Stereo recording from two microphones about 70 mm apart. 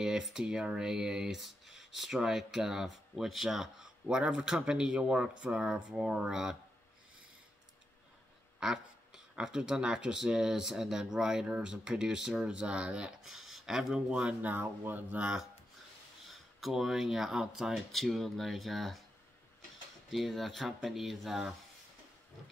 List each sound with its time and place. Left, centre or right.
0.0 s speech: centre
8.5 s speech: centre
14.5 s speech: right
15.1 s speech: centre
16.3 s speech: centre
20.1 s speech: centre